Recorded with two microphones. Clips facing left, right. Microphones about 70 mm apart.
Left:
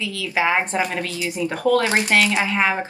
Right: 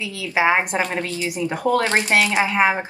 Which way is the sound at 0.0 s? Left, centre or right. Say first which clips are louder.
Right 2 dB; right.